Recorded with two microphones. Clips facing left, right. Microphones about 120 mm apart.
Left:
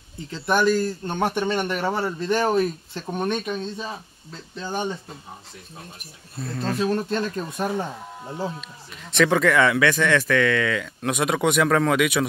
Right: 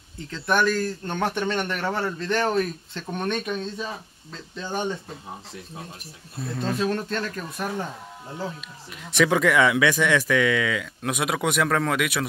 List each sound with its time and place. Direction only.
0.3 s a man's voice: 10° left (ahead or behind)
6.4 s speech: 15° right (ahead or behind)
6.7 s a man's voice: 5° left (ahead or behind); by 7.8 s 25° left (ahead or behind)
9.1 s speech: 10° right (ahead or behind)